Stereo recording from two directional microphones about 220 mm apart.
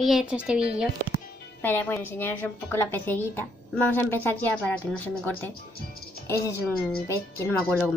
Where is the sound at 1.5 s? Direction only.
10° left (ahead or behind).